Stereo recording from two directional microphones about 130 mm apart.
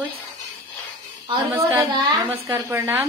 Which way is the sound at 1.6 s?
25° right (ahead or behind).